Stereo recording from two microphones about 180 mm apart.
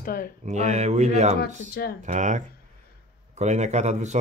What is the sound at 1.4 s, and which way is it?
Speech, 60° left (ahead or behind).